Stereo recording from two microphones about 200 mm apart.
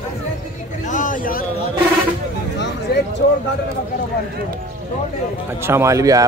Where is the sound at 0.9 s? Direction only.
40° left (ahead or behind).